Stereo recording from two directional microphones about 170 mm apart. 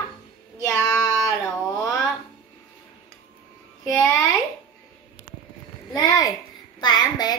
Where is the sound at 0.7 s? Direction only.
10° left (ahead or behind).